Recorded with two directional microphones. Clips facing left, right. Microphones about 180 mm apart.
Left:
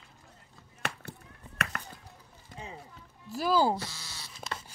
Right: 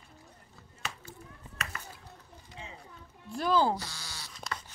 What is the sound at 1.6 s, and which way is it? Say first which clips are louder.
Chop: left 5 dB; 60° left (ahead or behind).